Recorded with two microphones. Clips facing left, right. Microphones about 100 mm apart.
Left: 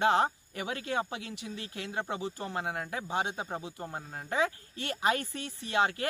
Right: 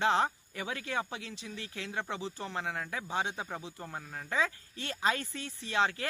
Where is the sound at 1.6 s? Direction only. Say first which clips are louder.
Left 1 dB; 50° left (ahead or behind).